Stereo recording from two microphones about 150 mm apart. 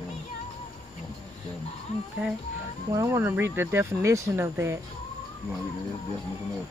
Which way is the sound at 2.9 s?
20° right (ahead or behind).